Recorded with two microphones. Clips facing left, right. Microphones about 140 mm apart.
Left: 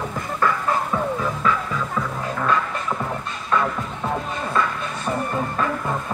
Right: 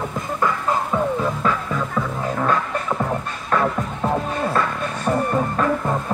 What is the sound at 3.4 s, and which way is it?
Music, 35° right (ahead or behind).